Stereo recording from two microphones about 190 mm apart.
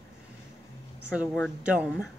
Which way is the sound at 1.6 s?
5° right (ahead or behind).